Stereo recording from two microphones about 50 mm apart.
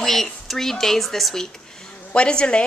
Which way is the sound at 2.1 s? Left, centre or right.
Centre.